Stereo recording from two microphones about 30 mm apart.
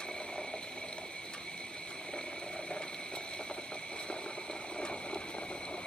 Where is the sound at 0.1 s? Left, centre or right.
Left.